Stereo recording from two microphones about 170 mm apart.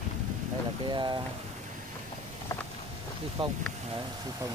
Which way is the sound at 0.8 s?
25° right (ahead or behind).